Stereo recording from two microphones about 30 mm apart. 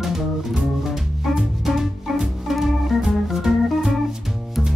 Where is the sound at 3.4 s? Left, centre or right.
Centre.